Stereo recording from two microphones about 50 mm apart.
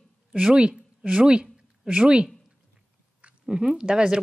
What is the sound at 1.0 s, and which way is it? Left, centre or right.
Speech, centre.